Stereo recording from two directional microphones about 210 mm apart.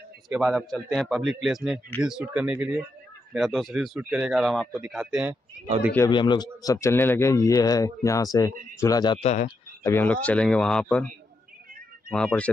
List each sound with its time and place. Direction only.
0.3 s speech: centre (ahead or behind)
5.9 s a man's voice: 20° left (ahead or behind)
9.8 s a man's voice: 10° left (ahead or behind)
12.1 s speech: 5° left (ahead or behind)